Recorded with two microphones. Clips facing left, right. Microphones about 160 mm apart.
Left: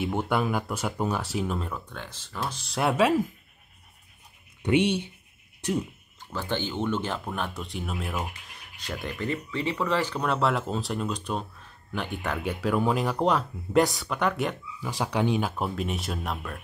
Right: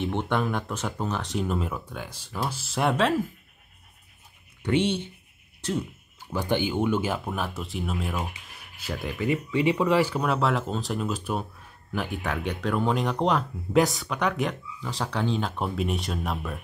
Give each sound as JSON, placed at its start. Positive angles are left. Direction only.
{"t": 0.0, "sound": "speech", "side_deg": 5}
{"t": 4.6, "sound": "speech", "side_deg": 15}
{"t": 6.3, "sound": "speech", "side_deg": -15}